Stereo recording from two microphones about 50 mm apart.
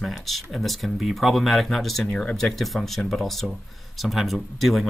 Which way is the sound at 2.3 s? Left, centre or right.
Centre.